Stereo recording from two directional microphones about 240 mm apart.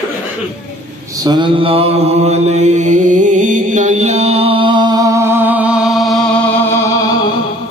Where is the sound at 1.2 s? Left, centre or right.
Centre.